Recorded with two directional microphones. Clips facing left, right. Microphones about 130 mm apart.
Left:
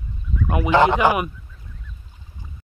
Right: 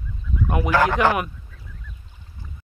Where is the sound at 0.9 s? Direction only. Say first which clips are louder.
Left 1 dB; 5° left (ahead or behind).